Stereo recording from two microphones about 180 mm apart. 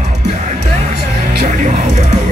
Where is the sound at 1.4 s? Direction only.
50° right (ahead or behind).